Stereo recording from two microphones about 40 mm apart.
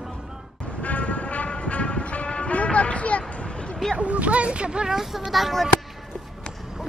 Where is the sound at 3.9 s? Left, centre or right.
Right.